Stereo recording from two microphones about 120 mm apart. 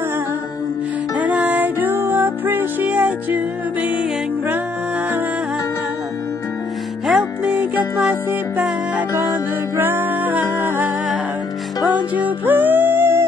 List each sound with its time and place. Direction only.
1.2 s music: 10° right (ahead or behind)
7.1 s music: 10° right (ahead or behind)
11.9 s music: 15° right (ahead or behind)